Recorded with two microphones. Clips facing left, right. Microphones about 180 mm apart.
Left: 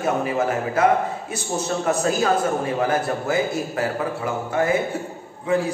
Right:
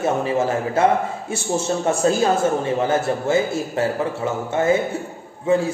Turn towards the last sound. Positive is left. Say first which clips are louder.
# right 3 dB
turn(degrees=-25)  # may be behind; listen again after turning